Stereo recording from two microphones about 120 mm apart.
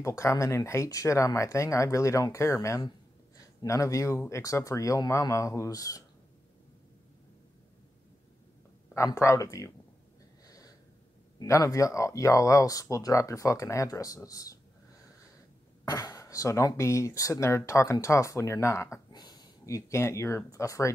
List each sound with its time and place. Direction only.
0.0 s speech: 25° left (ahead or behind)
8.9 s speech: 25° left (ahead or behind)
10.4 s snort: 30° left (ahead or behind)
11.3 s speech: 25° left (ahead or behind)
15.8 s speech: 30° left (ahead or behind)
19.1 s speech: 35° left (ahead or behind)